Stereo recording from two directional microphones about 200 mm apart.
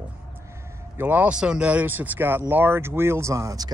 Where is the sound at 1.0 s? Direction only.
10° right (ahead or behind).